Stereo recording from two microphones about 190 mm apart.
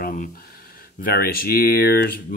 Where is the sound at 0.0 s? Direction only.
45° left (ahead or behind).